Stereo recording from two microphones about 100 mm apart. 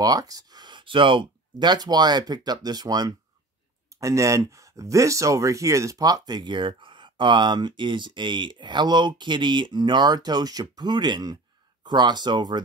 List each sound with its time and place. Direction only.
0.0 s speech: 40° right (ahead or behind)